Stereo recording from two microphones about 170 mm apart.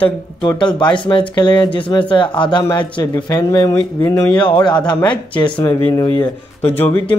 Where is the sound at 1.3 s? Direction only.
25° left (ahead or behind).